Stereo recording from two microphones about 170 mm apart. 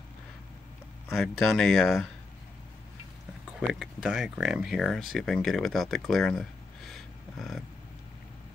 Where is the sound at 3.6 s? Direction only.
Centre (ahead or behind).